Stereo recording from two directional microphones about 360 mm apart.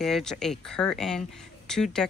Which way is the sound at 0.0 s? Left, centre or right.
Centre.